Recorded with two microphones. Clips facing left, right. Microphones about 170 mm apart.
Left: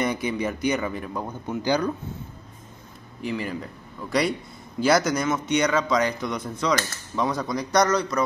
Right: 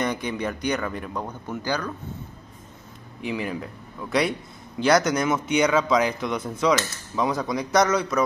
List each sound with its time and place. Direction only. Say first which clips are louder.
0.0 s speech: left 1 dB; 5° left (ahead or behind)
1.6 s speech: left 5 dB; 15° left (ahead or behind)
3.2 s speech: even; centre (ahead or behind)